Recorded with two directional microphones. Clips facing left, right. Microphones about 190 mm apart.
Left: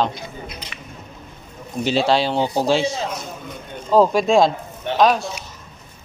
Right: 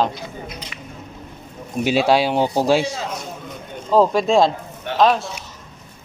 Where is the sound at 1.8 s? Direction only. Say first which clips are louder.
Right 2 dB; 10° right (ahead or behind).